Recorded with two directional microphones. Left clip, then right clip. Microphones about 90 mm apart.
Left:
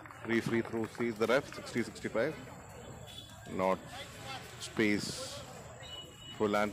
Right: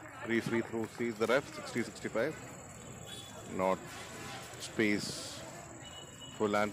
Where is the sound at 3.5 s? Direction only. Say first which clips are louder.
Even; centre (ahead or behind).